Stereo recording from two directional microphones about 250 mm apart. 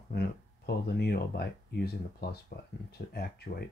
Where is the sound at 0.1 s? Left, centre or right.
Left.